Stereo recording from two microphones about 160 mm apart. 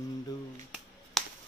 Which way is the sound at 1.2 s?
Centre (ahead or behind).